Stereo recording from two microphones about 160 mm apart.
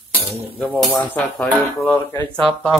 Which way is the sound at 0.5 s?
Centre (ahead or behind).